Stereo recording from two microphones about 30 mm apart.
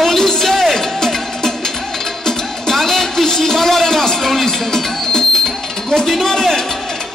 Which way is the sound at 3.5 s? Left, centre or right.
Centre.